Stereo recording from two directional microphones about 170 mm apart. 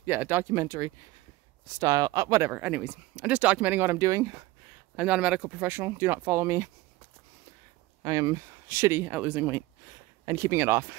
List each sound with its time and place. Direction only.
0.0 s speech: 10° right (ahead or behind)
4.9 s speech: 5° right (ahead or behind)
8.0 s speech: 20° right (ahead or behind)